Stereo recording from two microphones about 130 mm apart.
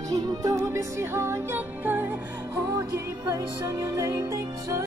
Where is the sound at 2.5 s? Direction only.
25° right (ahead or behind).